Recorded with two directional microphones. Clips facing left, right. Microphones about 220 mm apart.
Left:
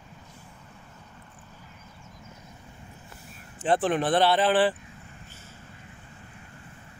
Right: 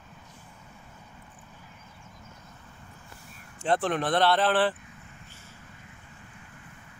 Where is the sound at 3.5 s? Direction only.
5° left (ahead or behind).